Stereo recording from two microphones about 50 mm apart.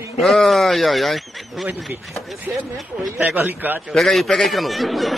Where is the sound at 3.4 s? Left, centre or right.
Right.